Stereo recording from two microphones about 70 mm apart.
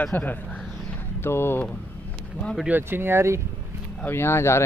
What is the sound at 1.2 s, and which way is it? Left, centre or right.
Speech, left.